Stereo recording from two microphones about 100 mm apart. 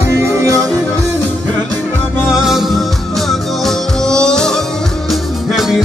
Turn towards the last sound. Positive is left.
turn(degrees=5)  # may be behind; listen again after turning